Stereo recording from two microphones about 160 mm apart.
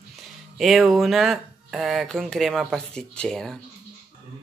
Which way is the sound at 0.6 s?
Centre (ahead or behind).